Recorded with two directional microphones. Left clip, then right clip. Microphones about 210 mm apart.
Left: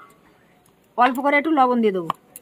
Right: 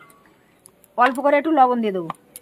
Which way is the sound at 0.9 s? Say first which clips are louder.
Right 1 dB; 5° right (ahead or behind).